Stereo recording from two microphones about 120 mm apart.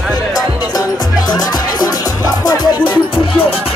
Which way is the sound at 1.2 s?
35° left (ahead or behind).